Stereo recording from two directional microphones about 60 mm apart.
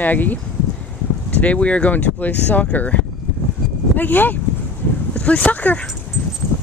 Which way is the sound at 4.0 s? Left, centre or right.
Left.